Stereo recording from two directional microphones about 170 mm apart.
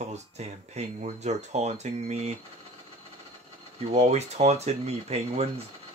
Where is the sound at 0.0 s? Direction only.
40° right (ahead or behind).